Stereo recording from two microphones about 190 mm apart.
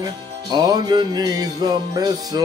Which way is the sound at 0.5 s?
20° right (ahead or behind).